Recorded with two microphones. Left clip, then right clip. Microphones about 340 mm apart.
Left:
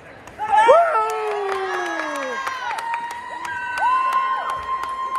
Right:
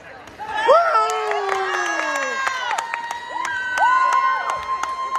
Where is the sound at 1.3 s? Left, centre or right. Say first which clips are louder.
Right 2 dB; right.